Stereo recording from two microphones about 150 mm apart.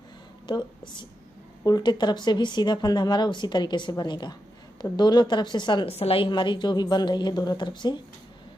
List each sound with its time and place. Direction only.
0.5 s a woman's voice: 30° left (ahead or behind)